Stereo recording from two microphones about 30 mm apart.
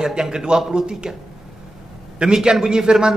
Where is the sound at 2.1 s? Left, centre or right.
Right.